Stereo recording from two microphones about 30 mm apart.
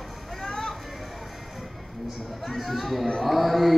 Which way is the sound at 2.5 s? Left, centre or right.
Centre.